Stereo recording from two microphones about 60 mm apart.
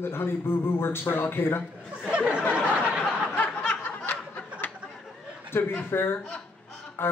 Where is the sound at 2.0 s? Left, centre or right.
Centre.